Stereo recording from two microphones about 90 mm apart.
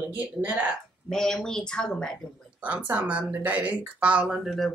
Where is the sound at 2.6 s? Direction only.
15° right (ahead or behind).